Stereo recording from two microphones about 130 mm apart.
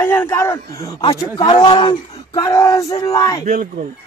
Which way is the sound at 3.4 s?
90° right.